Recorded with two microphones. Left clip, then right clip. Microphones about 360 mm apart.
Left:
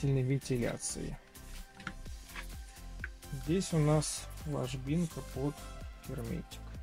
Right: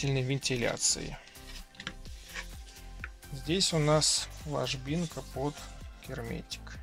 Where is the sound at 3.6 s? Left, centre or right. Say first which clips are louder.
Right 8 dB; right.